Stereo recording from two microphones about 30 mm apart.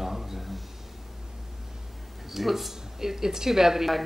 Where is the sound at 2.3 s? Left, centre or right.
Centre.